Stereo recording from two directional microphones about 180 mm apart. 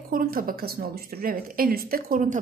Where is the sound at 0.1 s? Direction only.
50° right (ahead or behind).